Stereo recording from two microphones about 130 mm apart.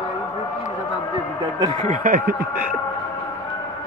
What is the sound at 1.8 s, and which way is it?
Speech, 75° right (ahead or behind).